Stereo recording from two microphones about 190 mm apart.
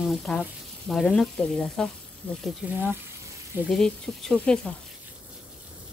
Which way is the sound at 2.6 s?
5° right (ahead or behind).